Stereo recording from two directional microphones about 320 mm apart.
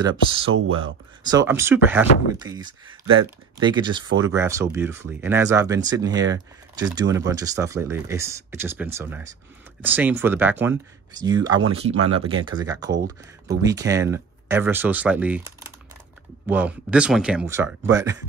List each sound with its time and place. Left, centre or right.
0.0 s speech: centre